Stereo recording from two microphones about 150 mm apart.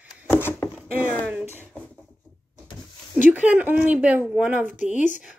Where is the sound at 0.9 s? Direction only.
10° right (ahead or behind).